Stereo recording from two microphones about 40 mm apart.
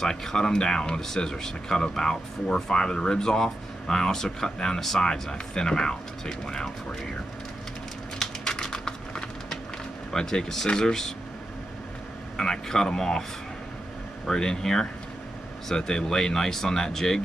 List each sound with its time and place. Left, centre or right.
0.0 s speech: centre
8.2 s typing: centre
10.1 s speech: centre
12.4 s speech: centre
14.2 s speech: centre